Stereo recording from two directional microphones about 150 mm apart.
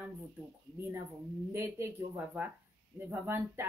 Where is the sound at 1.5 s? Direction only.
15° right (ahead or behind).